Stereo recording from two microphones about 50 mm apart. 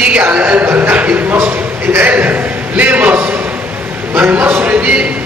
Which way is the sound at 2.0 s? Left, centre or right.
Right.